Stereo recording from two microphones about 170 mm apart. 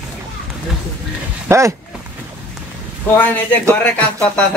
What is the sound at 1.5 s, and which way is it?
Speech, 15° right (ahead or behind).